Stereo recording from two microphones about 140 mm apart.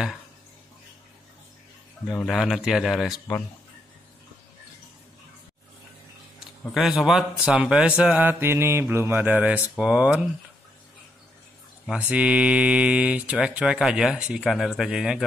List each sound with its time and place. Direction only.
2.2 s speech: centre (ahead or behind)
6.7 s speech: 5° right (ahead or behind)
12.1 s speech: 10° right (ahead or behind)